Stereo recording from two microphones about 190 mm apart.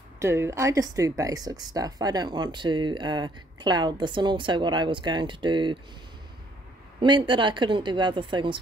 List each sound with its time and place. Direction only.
0.2 s speech: 15° right (ahead or behind)
7.0 s speech: 25° right (ahead or behind)